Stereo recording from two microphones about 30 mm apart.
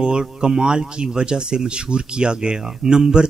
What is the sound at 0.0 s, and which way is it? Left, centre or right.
Speech, right.